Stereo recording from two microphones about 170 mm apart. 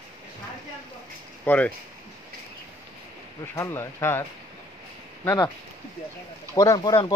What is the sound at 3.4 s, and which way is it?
Speech, 15° left (ahead or behind).